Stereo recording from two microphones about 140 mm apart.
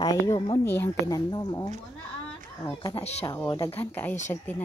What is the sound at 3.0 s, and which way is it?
Speech, 50° left (ahead or behind).